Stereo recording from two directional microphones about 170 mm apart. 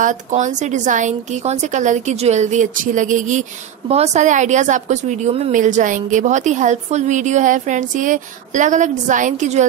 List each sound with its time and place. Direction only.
0.0 s a woman's voice: 45° right (ahead or behind)